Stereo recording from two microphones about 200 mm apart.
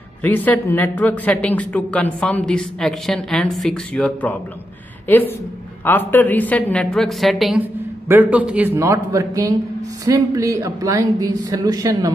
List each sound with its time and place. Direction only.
0.2 s a woman's voice: 10° left (ahead or behind); by 12.1 s 15° right (ahead or behind)